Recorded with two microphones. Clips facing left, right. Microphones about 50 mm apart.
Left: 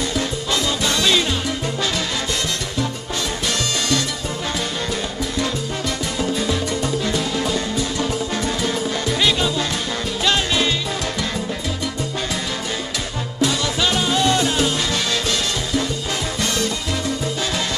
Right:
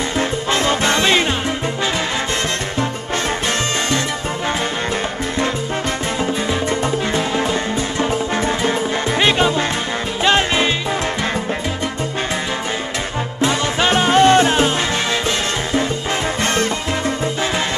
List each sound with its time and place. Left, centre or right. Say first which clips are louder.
0.5 s music: right 5 dB; right
8.0 s music: right 4 dB; right
13.4 s music: right 2 dB; right